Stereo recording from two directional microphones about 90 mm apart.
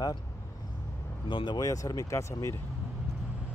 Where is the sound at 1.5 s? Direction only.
40° left (ahead or behind).